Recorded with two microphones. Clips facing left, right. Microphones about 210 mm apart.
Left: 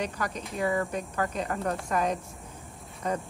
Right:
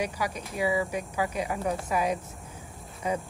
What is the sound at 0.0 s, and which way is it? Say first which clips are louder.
Speech: right 1 dB; 10° right (ahead or behind).